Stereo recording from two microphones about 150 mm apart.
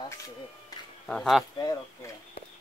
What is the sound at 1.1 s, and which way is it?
Speech, centre (ahead or behind).